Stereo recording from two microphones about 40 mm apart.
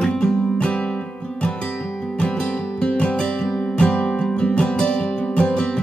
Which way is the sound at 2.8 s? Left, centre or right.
Left.